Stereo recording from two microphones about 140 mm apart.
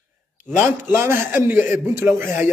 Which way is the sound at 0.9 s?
15° right (ahead or behind).